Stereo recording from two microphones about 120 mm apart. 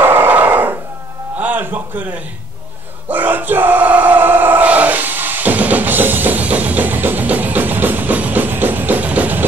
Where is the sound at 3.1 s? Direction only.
15° right (ahead or behind).